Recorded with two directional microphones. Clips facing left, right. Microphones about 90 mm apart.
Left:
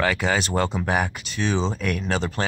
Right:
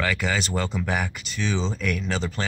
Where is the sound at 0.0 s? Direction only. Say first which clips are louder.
Left 3 dB; 35° left (ahead or behind).